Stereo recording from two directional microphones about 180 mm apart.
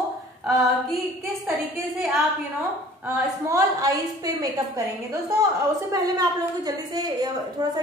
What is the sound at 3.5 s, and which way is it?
A woman's voice, 20° right (ahead or behind).